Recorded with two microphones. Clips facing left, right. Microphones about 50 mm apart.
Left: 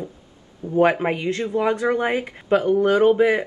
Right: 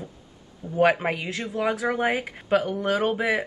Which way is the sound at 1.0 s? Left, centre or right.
Centre.